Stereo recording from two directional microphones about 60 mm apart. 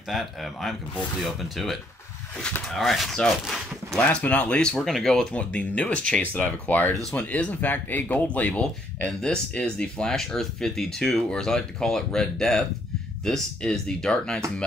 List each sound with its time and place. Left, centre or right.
0.1 s speech: centre
4.2 s speech: left; by 5.2 s centre
5.3 s speech: left